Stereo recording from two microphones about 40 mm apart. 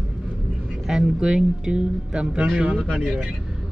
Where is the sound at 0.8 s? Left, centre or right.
Centre.